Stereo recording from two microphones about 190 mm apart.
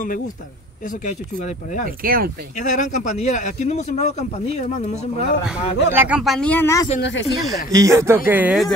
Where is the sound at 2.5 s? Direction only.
40° left (ahead or behind).